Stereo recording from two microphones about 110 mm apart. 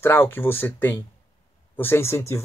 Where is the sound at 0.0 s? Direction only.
20° left (ahead or behind).